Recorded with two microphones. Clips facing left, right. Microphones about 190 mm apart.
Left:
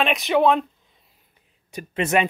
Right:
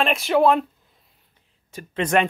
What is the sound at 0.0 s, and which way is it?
Speech, centre (ahead or behind).